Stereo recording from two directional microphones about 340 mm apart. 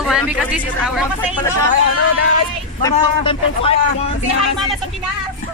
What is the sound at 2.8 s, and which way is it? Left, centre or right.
A man's voice, centre.